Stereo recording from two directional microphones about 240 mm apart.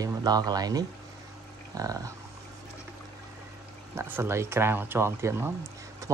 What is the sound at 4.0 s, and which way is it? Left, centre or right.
Speech, centre.